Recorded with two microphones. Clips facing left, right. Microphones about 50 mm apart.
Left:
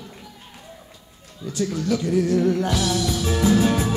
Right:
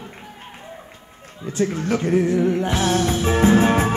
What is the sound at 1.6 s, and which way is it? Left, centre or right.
Speech, right.